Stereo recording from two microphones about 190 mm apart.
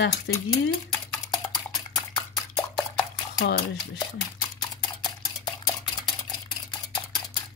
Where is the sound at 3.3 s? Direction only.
60° left (ahead or behind).